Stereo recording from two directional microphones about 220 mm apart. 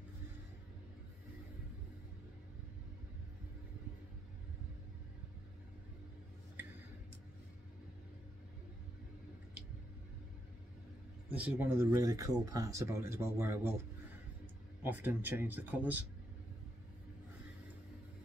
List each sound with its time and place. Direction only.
11.2 s speech: 5° right (ahead or behind)
14.8 s speech: 10° right (ahead or behind)